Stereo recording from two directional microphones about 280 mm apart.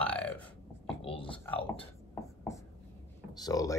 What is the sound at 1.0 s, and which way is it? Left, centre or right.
Speech, centre.